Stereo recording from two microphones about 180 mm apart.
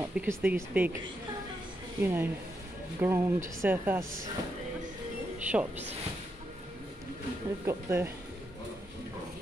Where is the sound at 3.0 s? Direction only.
15° right (ahead or behind).